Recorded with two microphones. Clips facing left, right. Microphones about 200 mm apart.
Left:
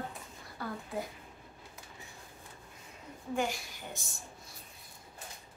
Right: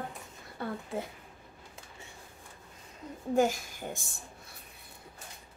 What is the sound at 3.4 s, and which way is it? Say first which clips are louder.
Speech: right 8 dB; 45° right (ahead or behind).